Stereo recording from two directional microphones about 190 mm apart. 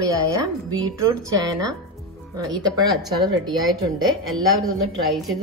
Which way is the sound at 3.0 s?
20° right (ahead or behind).